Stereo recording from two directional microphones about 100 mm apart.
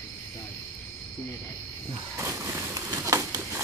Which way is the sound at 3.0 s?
30° right (ahead or behind).